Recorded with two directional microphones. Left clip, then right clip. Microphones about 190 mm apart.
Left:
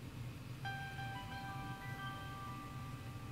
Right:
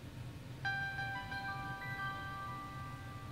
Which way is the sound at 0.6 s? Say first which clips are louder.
Right 8 dB; 5° right (ahead or behind).